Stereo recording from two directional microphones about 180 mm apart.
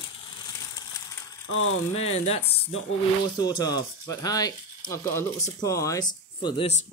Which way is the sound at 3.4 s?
20° left (ahead or behind).